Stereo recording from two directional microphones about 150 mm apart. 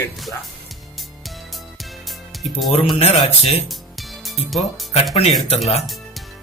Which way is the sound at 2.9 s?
40° left (ahead or behind).